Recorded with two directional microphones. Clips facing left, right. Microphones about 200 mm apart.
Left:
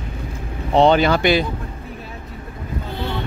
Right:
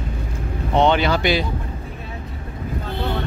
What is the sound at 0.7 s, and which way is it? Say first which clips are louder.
Speech: left 3 dB; 35° left (ahead or behind).